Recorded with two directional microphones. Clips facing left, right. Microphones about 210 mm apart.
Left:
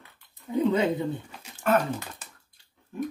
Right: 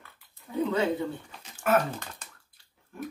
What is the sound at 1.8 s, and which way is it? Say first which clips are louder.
Speech: left 1 dB; 5° left (ahead or behind).